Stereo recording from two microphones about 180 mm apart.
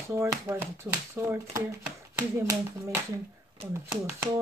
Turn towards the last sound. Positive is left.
turn(degrees=-20)  # may be behind; listen again after turning